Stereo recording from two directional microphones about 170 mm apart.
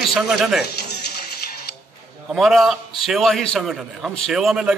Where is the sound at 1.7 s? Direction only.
65° left (ahead or behind).